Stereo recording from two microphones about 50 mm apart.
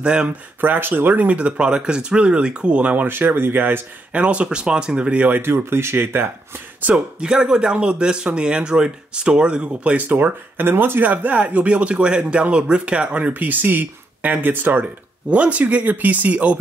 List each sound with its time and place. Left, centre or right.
0.0 s speech: centre
0.6 s speech: right
4.1 s speech: right
5.4 s speech: right
7.2 s speech: centre
10.0 s speech: right
13.3 s speech: right
15.2 s speech: right